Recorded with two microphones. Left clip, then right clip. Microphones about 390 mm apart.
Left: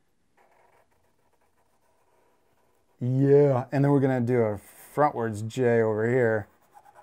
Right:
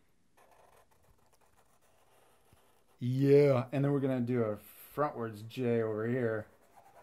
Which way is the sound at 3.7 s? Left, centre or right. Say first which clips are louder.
Left 9 dB; left.